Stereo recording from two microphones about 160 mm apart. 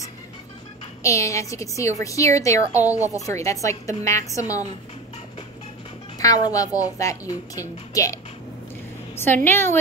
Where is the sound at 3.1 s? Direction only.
20° left (ahead or behind).